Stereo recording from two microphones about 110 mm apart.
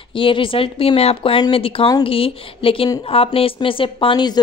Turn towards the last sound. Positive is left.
turn(degrees=40)  # may be behind; listen again after turning